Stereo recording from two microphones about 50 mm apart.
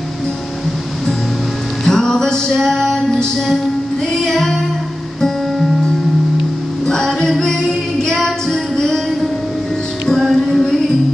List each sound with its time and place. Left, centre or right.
1.9 s music: centre
6.9 s music: centre
8.0 s female singing: centre
10.0 s music: centre